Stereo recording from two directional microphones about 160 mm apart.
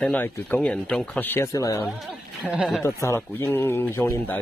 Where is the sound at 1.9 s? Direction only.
5° right (ahead or behind).